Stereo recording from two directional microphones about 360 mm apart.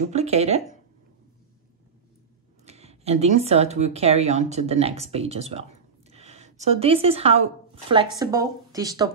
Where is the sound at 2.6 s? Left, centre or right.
Centre.